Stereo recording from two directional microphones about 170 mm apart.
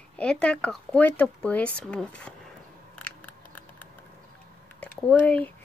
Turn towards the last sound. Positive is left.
turn(degrees=10)  # may be behind; listen again after turning